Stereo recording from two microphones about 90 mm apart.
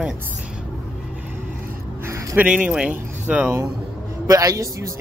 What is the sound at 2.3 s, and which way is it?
Speech, 15° right (ahead or behind).